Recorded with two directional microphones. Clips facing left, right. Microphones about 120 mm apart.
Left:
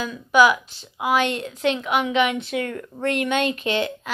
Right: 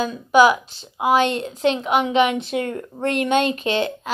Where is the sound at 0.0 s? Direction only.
30° right (ahead or behind).